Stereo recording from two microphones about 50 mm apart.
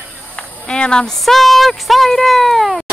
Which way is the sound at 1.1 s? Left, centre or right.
Centre.